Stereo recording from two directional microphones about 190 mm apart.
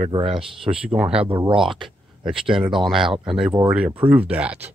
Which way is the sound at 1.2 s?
25° right (ahead or behind).